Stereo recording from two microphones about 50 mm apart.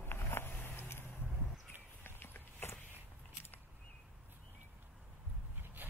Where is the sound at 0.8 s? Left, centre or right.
Left.